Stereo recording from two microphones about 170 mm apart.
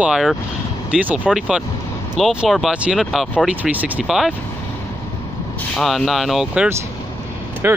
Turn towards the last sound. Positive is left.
turn(degrees=-15)  # may be behind; listen again after turning